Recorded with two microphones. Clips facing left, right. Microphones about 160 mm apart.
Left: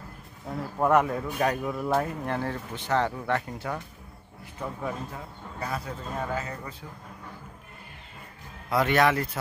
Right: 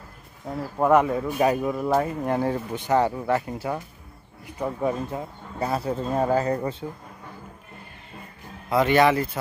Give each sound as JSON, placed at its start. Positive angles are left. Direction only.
{"t": 0.7, "sound": "speech", "side_deg": -5}
{"t": 2.2, "sound": "speech", "side_deg": -15}
{"t": 4.6, "sound": "speech", "side_deg": -25}
{"t": 8.6, "sound": "speech", "side_deg": 0}